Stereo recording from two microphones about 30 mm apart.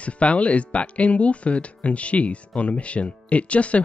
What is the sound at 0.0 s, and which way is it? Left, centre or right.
Speech, left.